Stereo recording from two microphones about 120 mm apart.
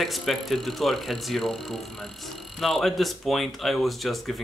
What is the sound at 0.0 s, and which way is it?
Speech, centre (ahead or behind).